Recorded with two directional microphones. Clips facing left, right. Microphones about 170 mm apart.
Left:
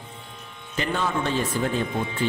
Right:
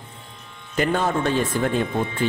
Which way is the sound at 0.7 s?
50° right (ahead or behind).